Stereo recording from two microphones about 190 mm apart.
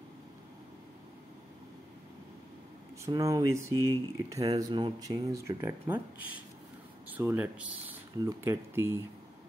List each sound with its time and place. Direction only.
3.1 s speech: 15° right (ahead or behind)
7.2 s speech: 10° right (ahead or behind)